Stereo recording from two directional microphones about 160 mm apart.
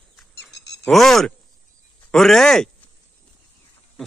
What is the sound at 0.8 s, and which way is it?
Speech, centre (ahead or behind).